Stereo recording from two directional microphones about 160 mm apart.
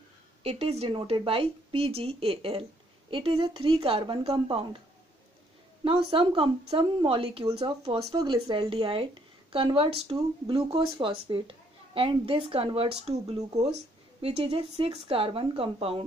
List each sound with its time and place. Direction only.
0.4 s a woman's voice: 40° right (ahead or behind)
5.9 s a woman's voice: 35° right (ahead or behind)
11.0 s a woman's voice: 35° right (ahead or behind)